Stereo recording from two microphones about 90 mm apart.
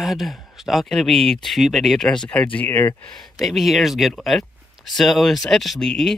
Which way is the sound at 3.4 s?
Centre (ahead or behind).